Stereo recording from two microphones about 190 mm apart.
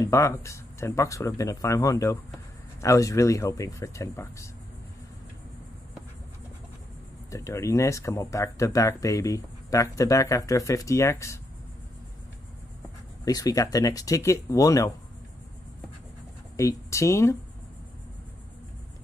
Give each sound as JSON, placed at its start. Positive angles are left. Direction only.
{"t": 0.0, "sound": "speech", "side_deg": 15}
{"t": 7.2, "sound": "speech", "side_deg": 15}
{"t": 13.2, "sound": "speech", "side_deg": 20}
{"t": 16.5, "sound": "speech", "side_deg": 15}